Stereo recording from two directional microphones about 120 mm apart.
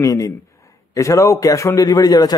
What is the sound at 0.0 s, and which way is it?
A man's voice, 25° left (ahead or behind).